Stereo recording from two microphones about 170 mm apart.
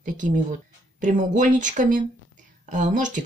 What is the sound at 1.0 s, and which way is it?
Speech, 50° right (ahead or behind).